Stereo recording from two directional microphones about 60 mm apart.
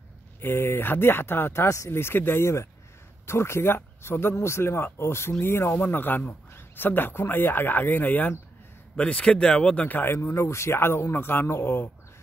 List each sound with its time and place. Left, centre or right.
0.4 s speech: left
1.6 s speech: left
1.9 s speech: left
8.9 s speech: centre
9.8 s speech: left
10.1 s speech: left